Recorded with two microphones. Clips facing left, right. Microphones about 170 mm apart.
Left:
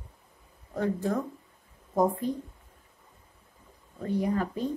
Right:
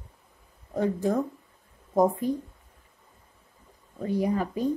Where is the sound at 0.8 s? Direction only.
15° right (ahead or behind).